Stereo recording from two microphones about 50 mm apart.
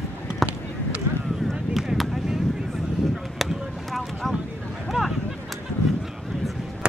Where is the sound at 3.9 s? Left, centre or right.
Centre.